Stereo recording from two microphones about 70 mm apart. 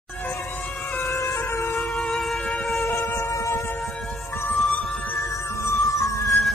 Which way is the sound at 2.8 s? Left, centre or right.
Left.